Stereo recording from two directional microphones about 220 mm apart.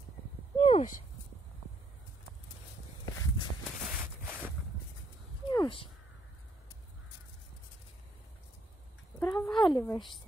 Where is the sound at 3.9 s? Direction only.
Centre (ahead or behind).